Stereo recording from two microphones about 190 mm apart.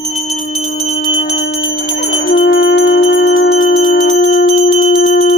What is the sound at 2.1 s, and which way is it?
Bell, 75° left (ahead or behind).